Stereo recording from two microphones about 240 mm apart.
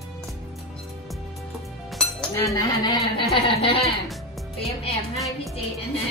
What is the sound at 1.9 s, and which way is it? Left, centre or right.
Speech, centre.